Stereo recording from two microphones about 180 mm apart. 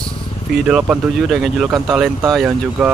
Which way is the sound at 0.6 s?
5° right (ahead or behind).